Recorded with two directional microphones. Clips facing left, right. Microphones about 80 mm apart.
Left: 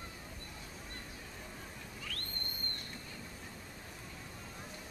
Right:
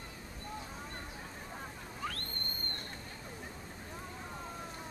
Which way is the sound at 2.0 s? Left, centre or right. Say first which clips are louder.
Right 8 dB; right.